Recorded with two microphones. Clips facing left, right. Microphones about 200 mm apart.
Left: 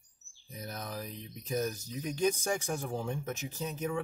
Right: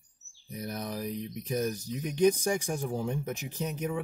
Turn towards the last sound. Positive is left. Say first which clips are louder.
# right 2 dB
turn(degrees=-15)  # may be behind; listen again after turning